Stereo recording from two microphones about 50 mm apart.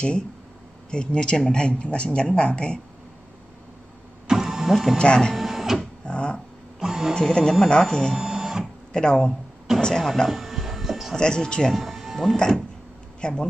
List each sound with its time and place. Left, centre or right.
0.8 s speech: centre
4.3 s printer: centre
4.9 s speech: centre
5.3 s printer: centre
5.8 s printer: left
6.8 s speech: centre
7.2 s speech: centre
8.1 s printer: centre
8.9 s speech: centre
9.8 s a sound: centre
10.2 s a sound: centre
11.1 s speech: centre
11.7 s speech: centre
12.4 s speech: centre